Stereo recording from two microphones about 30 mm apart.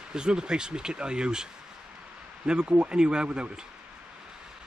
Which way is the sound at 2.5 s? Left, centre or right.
Right.